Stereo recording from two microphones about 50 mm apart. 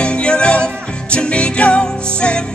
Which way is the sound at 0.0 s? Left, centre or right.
Centre.